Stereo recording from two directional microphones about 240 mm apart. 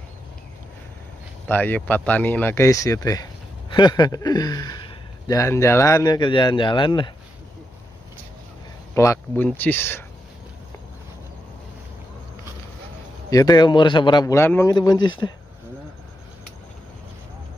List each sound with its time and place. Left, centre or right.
1.5 s a man's voice: centre
8.9 s a man's voice: centre
13.3 s a man's voice: centre